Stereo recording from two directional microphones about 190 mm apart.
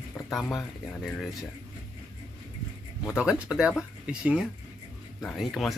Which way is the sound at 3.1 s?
5° right (ahead or behind).